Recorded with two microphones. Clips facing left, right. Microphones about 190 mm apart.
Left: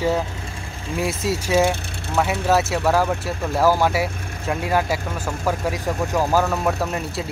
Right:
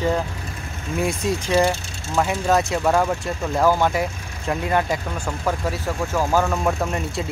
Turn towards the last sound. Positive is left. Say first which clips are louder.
# even
turn(degrees=0)  # may be behind; listen again after turning